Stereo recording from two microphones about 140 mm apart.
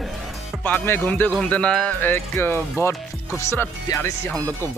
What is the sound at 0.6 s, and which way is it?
Speech, 15° left (ahead or behind).